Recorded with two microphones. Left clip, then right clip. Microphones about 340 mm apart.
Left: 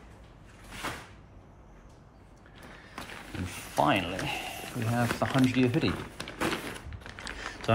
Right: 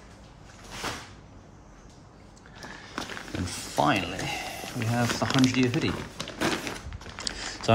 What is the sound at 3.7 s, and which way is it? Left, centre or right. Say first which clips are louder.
Speech: right 1 dB; centre.